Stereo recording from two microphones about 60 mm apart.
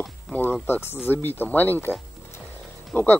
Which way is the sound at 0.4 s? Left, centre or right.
Left.